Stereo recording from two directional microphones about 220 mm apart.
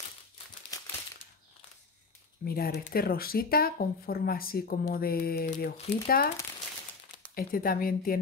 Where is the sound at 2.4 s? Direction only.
45° left (ahead or behind).